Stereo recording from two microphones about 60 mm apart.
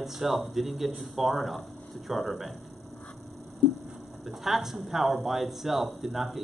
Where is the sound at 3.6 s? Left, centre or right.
Centre.